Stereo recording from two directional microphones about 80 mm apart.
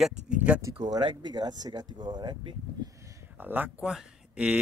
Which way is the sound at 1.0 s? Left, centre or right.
Right.